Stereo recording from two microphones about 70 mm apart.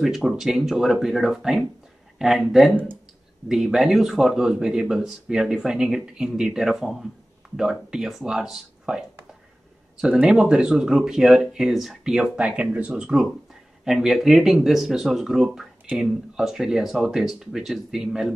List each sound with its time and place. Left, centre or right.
0.0 s speech: centre
10.0 s speech: centre
12.5 s speech: centre
13.8 s speech: centre